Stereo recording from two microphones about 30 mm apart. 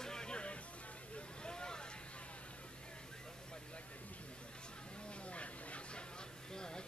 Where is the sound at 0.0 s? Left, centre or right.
Left.